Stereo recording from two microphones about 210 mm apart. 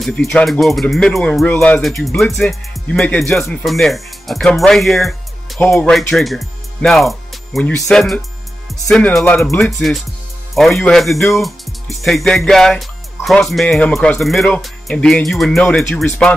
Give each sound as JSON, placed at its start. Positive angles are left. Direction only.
{"t": 0.0, "sound": "speech", "side_deg": 0}